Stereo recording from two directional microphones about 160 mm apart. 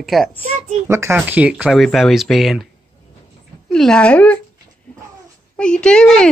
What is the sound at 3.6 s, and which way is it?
Speech, 5° left (ahead or behind).